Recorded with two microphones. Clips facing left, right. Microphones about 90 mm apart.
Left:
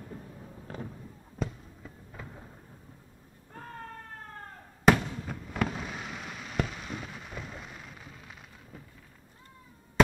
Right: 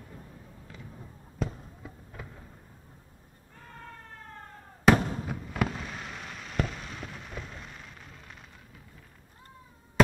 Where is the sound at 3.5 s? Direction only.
45° left (ahead or behind).